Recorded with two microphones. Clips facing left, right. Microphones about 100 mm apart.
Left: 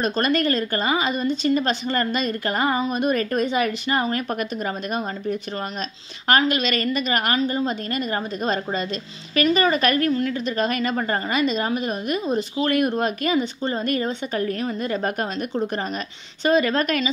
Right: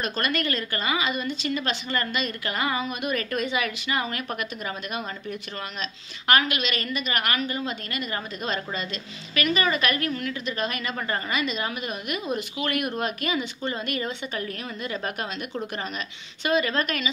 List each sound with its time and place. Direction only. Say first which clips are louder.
0.0 s a woman's voice: left 6 dB; 35° left (ahead or behind)